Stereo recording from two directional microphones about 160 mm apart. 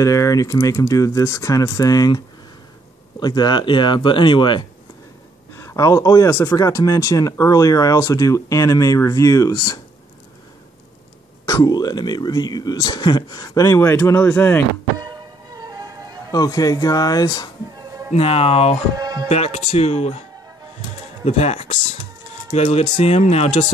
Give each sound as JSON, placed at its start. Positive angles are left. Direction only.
{"t": 0.0, "sound": "speech", "side_deg": 20}
{"t": 5.5, "sound": "speech", "side_deg": 15}
{"t": 11.4, "sound": "speech", "side_deg": 20}
{"t": 15.0, "sound": "music", "side_deg": -25}
{"t": 16.3, "sound": "speech", "side_deg": 20}
{"t": 18.1, "sound": "speech", "side_deg": 35}
{"t": 18.9, "sound": "music", "side_deg": -25}
{"t": 19.2, "sound": "speech", "side_deg": 40}